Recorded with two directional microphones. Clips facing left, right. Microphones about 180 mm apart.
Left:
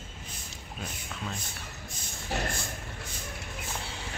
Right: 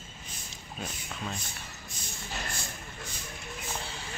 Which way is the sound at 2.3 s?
55° left (ahead or behind).